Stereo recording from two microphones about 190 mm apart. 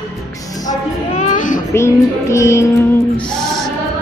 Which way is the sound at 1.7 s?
15° left (ahead or behind).